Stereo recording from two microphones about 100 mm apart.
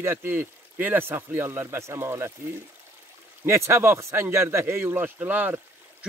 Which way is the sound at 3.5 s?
25° right (ahead or behind).